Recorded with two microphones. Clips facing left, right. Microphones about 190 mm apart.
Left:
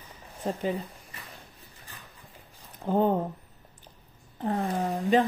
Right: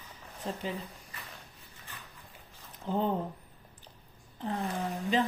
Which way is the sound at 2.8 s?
50° left (ahead or behind).